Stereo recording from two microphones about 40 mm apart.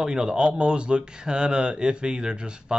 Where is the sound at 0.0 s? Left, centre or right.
Centre.